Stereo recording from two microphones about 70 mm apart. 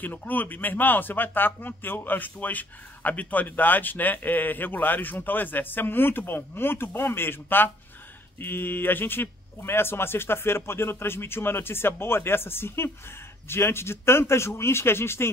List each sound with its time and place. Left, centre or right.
0.0 s speech: left